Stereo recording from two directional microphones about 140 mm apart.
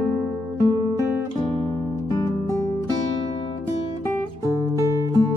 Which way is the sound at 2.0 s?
30° left (ahead or behind).